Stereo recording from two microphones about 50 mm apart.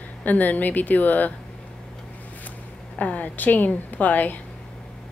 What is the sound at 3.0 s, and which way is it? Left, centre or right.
A woman's voice, left.